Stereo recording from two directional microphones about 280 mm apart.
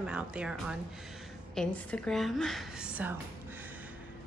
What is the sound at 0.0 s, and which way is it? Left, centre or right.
A woman's voice, centre.